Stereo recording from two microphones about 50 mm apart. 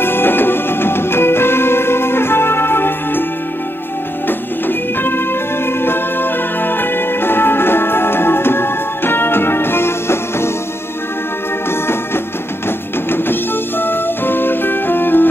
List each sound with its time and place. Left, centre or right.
0.0 s music: left
4.3 s music: left
12.6 s music: left